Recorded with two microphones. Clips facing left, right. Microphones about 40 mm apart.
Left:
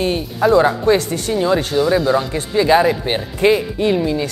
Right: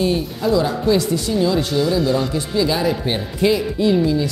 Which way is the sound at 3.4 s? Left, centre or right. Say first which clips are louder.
Left 3 dB; left.